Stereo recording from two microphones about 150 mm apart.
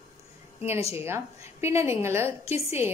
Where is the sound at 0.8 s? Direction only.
15° right (ahead or behind).